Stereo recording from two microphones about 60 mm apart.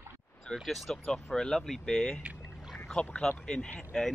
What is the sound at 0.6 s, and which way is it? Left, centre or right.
Speech, centre.